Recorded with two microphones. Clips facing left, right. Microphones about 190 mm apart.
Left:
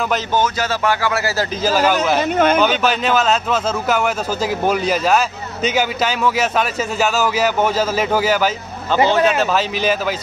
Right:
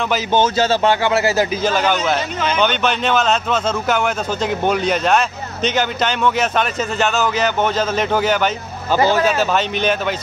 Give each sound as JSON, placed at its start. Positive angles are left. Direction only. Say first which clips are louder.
{"t": 0.3, "sound": "speech", "louder": "right 3 dB", "side_deg": -25}
{"t": 1.6, "sound": "speech", "louder": "left 2 dB", "side_deg": 5}
{"t": 2.1, "sound": "speech", "louder": "left 6 dB", "side_deg": 55}
{"t": 2.6, "sound": "speech", "louder": "left 1 dB", "side_deg": 5}
{"t": 8.9, "sound": "speech", "louder": "even", "side_deg": 20}
{"t": 9.2, "sound": "speech", "louder": "left 1 dB", "side_deg": 0}